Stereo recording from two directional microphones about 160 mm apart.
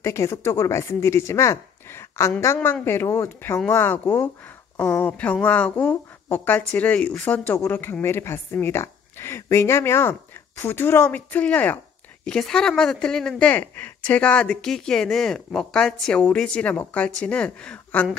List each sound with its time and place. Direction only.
0.0 s speech: 15° left (ahead or behind)